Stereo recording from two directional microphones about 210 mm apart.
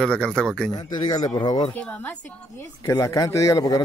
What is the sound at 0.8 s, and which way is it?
Speech, 20° left (ahead or behind).